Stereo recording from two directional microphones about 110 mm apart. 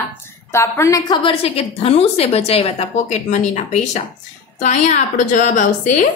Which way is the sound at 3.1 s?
90° left.